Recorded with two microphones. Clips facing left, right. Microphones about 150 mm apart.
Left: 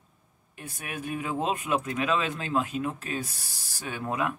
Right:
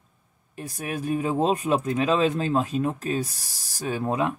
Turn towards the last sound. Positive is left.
turn(degrees=-30)  # may be behind; listen again after turning